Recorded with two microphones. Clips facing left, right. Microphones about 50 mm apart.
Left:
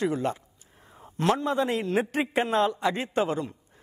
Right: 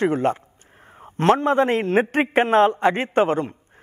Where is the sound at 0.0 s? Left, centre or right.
Right.